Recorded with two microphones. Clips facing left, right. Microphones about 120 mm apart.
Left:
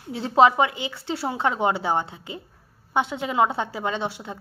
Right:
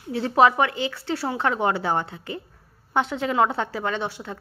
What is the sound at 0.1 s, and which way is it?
A woman's voice, 20° left (ahead or behind).